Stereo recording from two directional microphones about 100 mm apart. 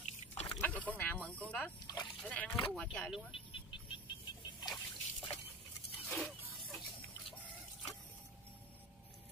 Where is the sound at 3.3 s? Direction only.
65° left (ahead or behind).